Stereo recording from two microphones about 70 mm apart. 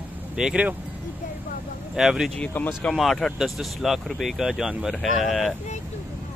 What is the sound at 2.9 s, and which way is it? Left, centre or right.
Speech, centre.